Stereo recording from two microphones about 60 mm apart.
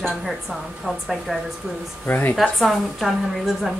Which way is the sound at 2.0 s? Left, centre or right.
Left.